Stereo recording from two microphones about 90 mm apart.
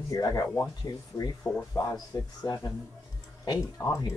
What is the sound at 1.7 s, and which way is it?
Speech, 45° left (ahead or behind).